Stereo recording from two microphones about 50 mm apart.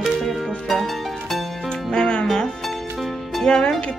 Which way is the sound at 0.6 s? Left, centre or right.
Centre.